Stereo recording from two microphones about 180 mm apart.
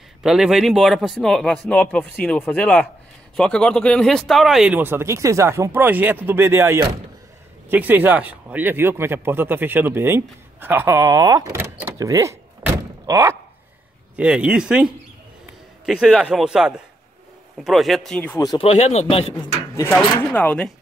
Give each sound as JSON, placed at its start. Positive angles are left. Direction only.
{"t": 0.2, "sound": "speech", "side_deg": -5}
{"t": 14.1, "sound": "a man's voice", "side_deg": -5}
{"t": 18.4, "sound": "speech", "side_deg": 20}
{"t": 18.7, "sound": "speech", "side_deg": 40}
{"t": 19.8, "sound": "speech", "side_deg": 10}